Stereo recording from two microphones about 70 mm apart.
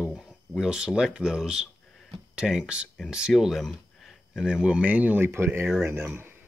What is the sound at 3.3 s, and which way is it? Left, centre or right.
Speech, centre.